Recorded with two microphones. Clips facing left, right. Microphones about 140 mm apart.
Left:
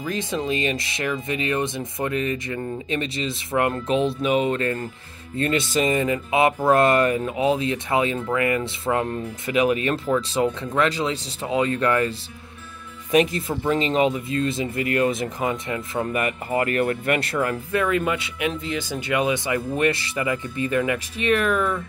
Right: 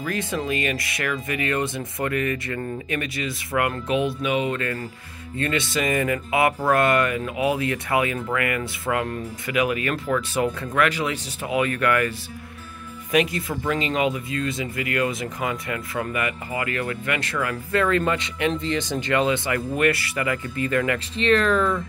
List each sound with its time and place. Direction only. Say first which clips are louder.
0.0 s speech: left 1 dB; 20° left (ahead or behind)
13.1 s speech: left 2 dB; 35° left (ahead or behind)
16.1 s speech: left 3 dB; 40° left (ahead or behind)
17.6 s speech: right 4 dB; 10° left (ahead or behind)